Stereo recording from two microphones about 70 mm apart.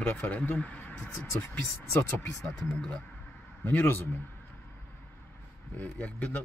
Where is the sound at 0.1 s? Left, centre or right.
Left.